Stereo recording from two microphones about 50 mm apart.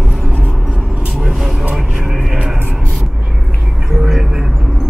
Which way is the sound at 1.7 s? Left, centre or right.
Right.